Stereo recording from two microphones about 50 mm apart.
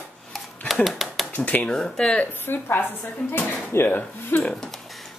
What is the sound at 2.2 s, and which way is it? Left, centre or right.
Speech, left.